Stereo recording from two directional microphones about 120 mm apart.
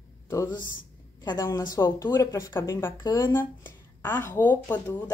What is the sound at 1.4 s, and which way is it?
A woman's voice, 25° left (ahead or behind).